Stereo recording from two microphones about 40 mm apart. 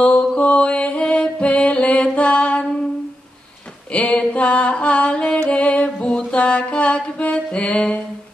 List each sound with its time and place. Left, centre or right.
0.4 s music: left
3.9 s music: left
5.5 s a sound: left